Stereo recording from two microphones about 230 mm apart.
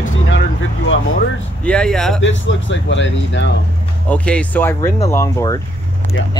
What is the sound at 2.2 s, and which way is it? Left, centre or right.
Speech, left.